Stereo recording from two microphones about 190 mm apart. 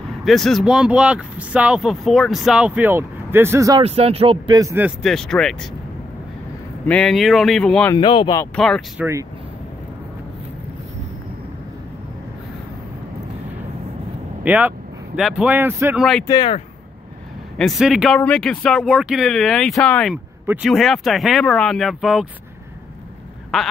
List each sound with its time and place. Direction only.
0.2 s speech: centre (ahead or behind); by 3.8 s 15° right (ahead or behind)
3.8 s speech: 30° right (ahead or behind); by 4.9 s 15° right (ahead or behind)
5.0 s speech: centre (ahead or behind)
6.9 s speech: 5° left (ahead or behind)
7.9 s speech: 25° left (ahead or behind)
8.5 s speech: 5° left (ahead or behind)
14.4 s speech: 10° right (ahead or behind)
16.0 s speech: centre (ahead or behind)
16.3 s speech: 25° left (ahead or behind)
17.6 s speech: centre (ahead or behind)